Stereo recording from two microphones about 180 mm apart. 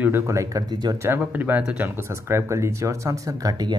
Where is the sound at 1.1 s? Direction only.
10° right (ahead or behind).